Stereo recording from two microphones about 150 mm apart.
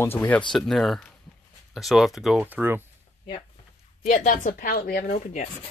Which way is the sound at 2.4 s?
15° right (ahead or behind).